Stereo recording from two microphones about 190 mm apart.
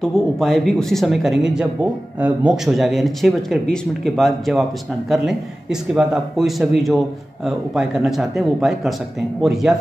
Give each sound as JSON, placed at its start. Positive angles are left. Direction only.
{"t": 0.0, "sound": "speech", "side_deg": 0}